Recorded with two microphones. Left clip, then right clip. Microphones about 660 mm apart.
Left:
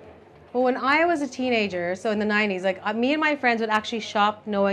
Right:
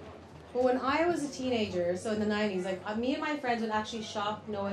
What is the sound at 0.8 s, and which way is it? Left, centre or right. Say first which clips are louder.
A woman's voice: left 8 dB; left.